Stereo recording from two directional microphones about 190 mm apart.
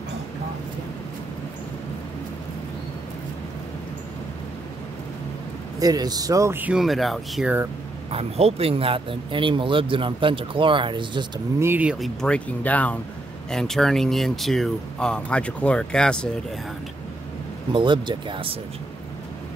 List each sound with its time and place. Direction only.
5.8 s speech: 20° right (ahead or behind); by 7.5 s centre (ahead or behind)
8.1 s speech: 30° right (ahead or behind)
11.6 s speech: 10° right (ahead or behind)
17.7 s speech: 25° right (ahead or behind)